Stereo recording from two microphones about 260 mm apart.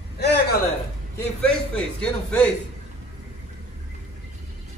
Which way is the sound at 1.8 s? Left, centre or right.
Centre.